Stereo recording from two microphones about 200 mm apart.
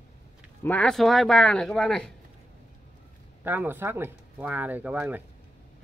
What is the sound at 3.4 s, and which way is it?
Speech, 10° right (ahead or behind).